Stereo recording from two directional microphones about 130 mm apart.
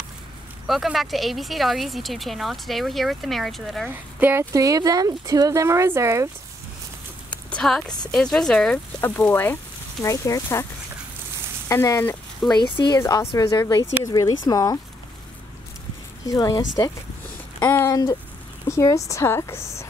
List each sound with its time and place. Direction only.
0.7 s speech: centre (ahead or behind)
3.9 s speech: 15° right (ahead or behind)
4.5 s speech: 25° right (ahead or behind)
7.2 s a sound: 10° left (ahead or behind)
8.1 s speech: 5° left (ahead or behind)
9.0 s speech: 15° left (ahead or behind)
10.0 s speech: 25° left (ahead or behind)
11.7 s speech: 25° left (ahead or behind)
12.5 s speech: 35° left (ahead or behind)
13.0 s speech: 20° left (ahead or behind)
16.3 s speech: 30° left (ahead or behind)
17.6 s speech: 15° left (ahead or behind)
17.8 s speech: 30° left (ahead or behind)